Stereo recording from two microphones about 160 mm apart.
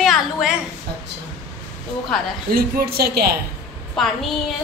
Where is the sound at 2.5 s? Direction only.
75° right (ahead or behind).